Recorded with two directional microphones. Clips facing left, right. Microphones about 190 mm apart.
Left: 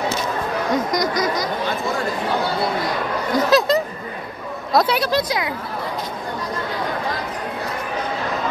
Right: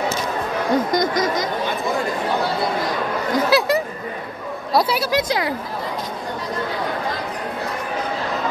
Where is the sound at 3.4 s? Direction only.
15° right (ahead or behind).